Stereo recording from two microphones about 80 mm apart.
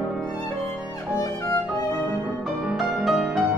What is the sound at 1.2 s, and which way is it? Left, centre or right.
Violin, left.